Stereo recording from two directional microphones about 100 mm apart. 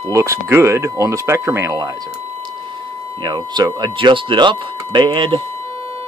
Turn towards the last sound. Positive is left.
turn(degrees=-55)  # may be behind; listen again after turning